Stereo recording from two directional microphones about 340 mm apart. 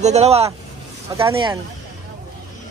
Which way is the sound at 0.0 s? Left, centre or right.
Centre.